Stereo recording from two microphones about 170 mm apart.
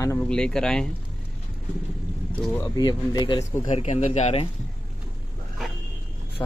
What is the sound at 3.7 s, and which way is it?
Speech, 45° left (ahead or behind).